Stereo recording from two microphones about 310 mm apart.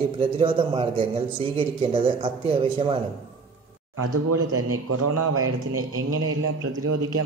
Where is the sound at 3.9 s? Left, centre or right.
Right.